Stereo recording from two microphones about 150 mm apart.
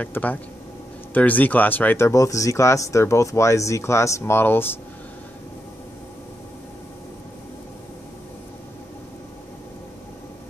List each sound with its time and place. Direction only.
0.0 s speech: 10° left (ahead or behind)